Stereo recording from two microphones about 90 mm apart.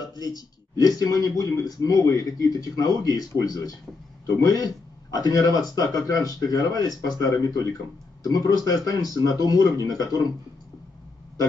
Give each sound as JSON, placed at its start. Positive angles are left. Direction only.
{"t": 0.0, "sound": "speech", "side_deg": 45}